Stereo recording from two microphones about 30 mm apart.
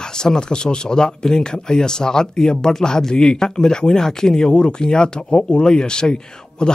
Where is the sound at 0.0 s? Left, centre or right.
Left.